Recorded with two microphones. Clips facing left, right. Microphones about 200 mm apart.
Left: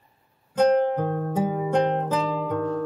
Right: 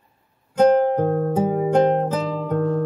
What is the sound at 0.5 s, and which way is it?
Music, 50° right (ahead or behind).